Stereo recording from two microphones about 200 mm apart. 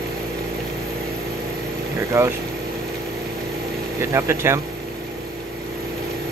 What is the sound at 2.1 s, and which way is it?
Speech, 15° right (ahead or behind).